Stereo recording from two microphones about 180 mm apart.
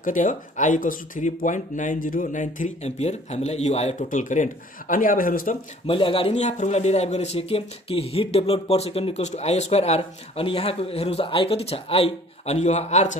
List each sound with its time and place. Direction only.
0.0 s speech: 45° left (ahead or behind)
5.9 s a man's voice: 30° left (ahead or behind)